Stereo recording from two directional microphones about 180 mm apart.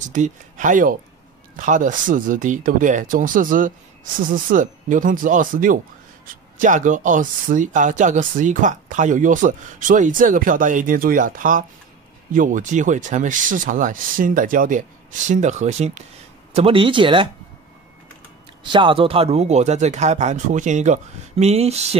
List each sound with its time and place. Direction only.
0.0 s speech: 45° right (ahead or behind); by 17.3 s 30° right (ahead or behind)
18.6 s speech: 25° right (ahead or behind)